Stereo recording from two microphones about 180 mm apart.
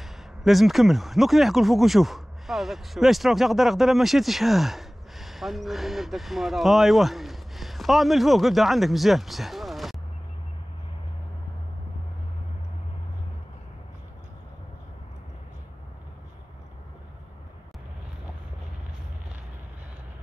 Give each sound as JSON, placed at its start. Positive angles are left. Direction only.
{"t": 0.0, "sound": "speech", "side_deg": 0}